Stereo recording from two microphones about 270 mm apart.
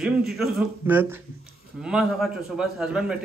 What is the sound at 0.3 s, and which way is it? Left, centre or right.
A man's voice, centre.